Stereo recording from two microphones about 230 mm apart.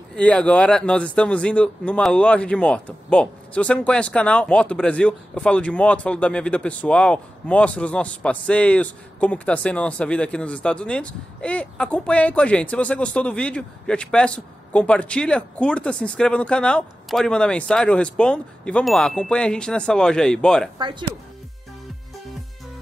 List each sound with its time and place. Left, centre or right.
0.1 s speech: centre
20.7 s speech: centre